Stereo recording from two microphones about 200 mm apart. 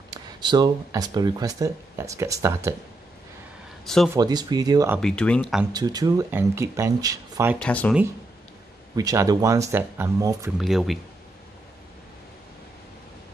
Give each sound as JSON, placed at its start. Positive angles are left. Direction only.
{"t": 0.1, "sound": "speech", "side_deg": -20}
{"t": 3.8, "sound": "speech", "side_deg": 0}
{"t": 4.1, "sound": "speech", "side_deg": -20}
{"t": 5.0, "sound": "speech", "side_deg": 5}
{"t": 5.7, "sound": "speech", "side_deg": -20}
{"t": 7.5, "sound": "speech", "side_deg": 5}
{"t": 8.9, "sound": "speech", "side_deg": -15}
{"t": 10.6, "sound": "speech", "side_deg": 0}